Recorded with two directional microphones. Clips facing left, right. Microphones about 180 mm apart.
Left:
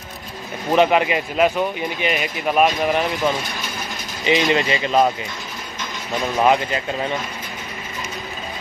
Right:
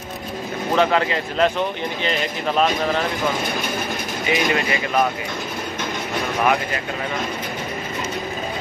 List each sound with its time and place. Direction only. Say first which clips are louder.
0.7 s speech: left 3 dB; 15° left (ahead or behind)
4.3 s speech: left 3 dB; 20° left (ahead or behind)
6.4 s speech: left 4 dB; 20° left (ahead or behind)